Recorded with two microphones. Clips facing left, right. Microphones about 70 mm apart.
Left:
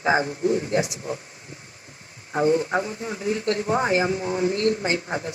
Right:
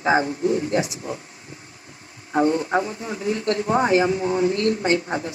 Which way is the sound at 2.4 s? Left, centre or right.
Right.